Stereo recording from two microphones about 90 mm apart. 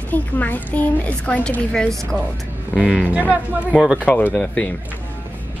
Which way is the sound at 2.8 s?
10° right (ahead or behind).